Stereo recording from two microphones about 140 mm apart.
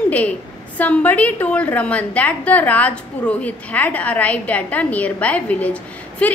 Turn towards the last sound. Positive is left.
turn(degrees=10)  # may be behind; listen again after turning